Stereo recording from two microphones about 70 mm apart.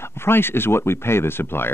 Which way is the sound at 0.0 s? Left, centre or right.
Left.